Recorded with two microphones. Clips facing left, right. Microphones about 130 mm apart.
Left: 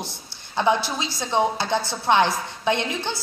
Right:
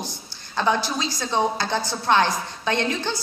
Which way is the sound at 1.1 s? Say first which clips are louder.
Left 2 dB; 25° left (ahead or behind).